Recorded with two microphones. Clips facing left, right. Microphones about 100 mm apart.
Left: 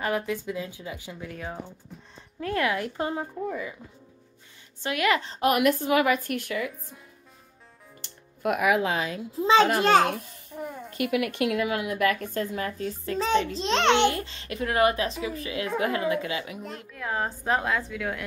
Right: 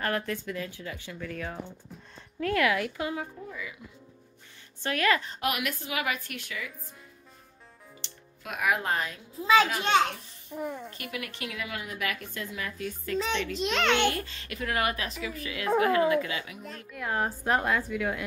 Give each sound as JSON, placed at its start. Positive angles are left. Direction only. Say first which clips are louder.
{"t": 0.0, "sound": "a woman's voice", "louder": "left 3 dB", "side_deg": 10}
{"t": 4.8, "sound": "speech", "louder": "left 2 dB", "side_deg": 20}
{"t": 5.2, "sound": "speech", "louder": "left 9 dB", "side_deg": 35}
{"t": 8.0, "sound": "speech", "louder": "left 17 dB", "side_deg": 55}
{"t": 9.3, "sound": "a woman's voice", "louder": "left 3 dB", "side_deg": 30}
{"t": 9.7, "sound": "a woman's voice", "louder": "left 5 dB", "side_deg": 40}
{"t": 10.5, "sound": "a woman's voice", "louder": "right 1 dB", "side_deg": 0}
{"t": 11.1, "sound": "a woman's voice", "louder": "left 13 dB", "side_deg": 55}
{"t": 15.6, "sound": "speech", "louder": "right 3 dB", "side_deg": -35}
{"t": 16.1, "sound": "a woman's voice", "louder": "even", "side_deg": 30}
{"t": 16.9, "sound": "a woman's voice", "louder": "even", "side_deg": 0}